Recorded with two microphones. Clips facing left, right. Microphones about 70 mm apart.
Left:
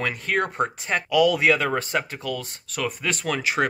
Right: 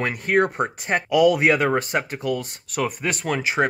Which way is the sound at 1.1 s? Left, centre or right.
Right.